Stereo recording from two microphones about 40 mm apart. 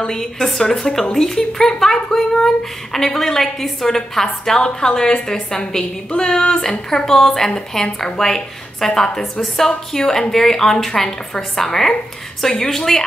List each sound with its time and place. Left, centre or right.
0.0 s a woman's voice: centre
6.9 s a woman's voice: centre
9.7 s speech: centre